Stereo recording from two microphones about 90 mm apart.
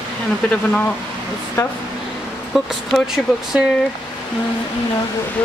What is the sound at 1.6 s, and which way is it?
Speech, 40° left (ahead or behind).